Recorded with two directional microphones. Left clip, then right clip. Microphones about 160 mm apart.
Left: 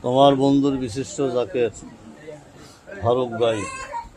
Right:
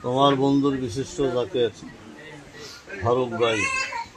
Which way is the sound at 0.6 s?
25° left (ahead or behind).